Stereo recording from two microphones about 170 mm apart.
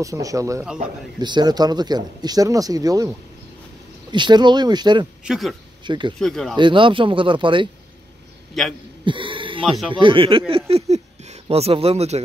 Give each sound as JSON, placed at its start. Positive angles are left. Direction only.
{"t": 0.0, "sound": "speech", "side_deg": -20}
{"t": 5.2, "sound": "a man's voice", "side_deg": 0}
{"t": 5.9, "sound": "speech", "side_deg": -25}
{"t": 6.1, "sound": "a man's voice", "side_deg": 0}
{"t": 6.5, "sound": "speech", "side_deg": -30}
{"t": 8.6, "sound": "a man's voice", "side_deg": 0}
{"t": 9.0, "sound": "a sound", "side_deg": -30}
{"t": 9.9, "sound": "speech", "side_deg": -30}